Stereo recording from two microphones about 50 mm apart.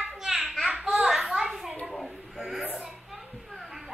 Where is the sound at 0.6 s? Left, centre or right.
Centre.